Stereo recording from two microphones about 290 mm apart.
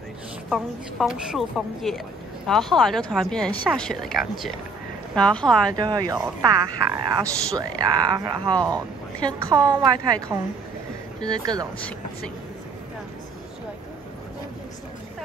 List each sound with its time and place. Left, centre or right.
0.5 s speech: centre
5.8 s speech: centre
11.1 s speech: centre